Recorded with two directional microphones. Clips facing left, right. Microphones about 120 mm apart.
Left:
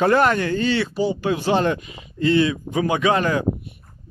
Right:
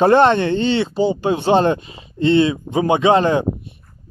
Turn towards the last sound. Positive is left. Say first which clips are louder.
# right 5 dB
turn(degrees=-25)  # may be behind; listen again after turning